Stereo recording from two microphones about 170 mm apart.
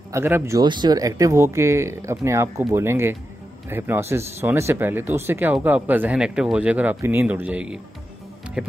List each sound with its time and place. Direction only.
0.1 s speech: 15° right (ahead or behind)